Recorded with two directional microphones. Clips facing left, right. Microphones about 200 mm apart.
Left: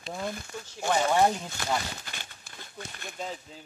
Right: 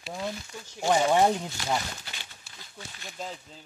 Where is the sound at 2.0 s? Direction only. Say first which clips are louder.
Left 2 dB; 50° left (ahead or behind).